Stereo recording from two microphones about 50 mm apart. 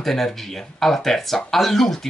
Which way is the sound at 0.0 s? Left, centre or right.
Centre.